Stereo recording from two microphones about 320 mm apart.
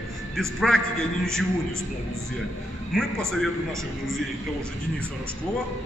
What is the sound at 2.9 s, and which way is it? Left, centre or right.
Speech, centre.